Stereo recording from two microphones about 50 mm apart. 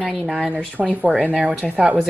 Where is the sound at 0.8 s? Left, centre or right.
Centre.